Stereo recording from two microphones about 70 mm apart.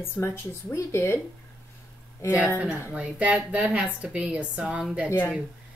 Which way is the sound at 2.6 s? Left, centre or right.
Right.